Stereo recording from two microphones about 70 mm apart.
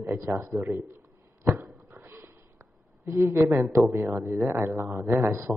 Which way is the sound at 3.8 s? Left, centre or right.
Right.